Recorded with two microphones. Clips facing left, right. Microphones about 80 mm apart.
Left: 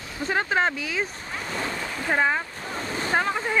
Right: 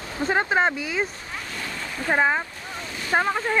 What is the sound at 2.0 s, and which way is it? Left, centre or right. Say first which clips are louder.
Speech: right 2 dB; centre.